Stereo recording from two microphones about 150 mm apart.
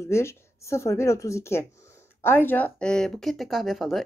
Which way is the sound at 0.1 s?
20° left (ahead or behind).